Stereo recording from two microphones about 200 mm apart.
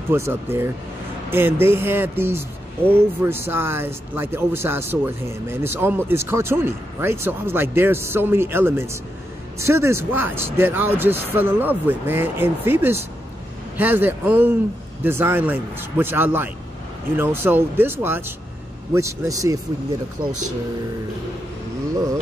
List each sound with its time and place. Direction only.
0.1 s speech: 10° right (ahead or behind)